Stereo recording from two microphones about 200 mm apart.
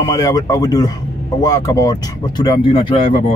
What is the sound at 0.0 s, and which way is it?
Speech, 20° left (ahead or behind).